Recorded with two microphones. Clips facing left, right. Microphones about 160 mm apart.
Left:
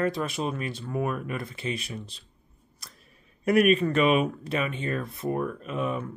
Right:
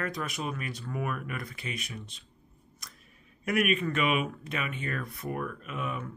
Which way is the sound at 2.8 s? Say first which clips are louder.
Left 1 dB; 30° left (ahead or behind).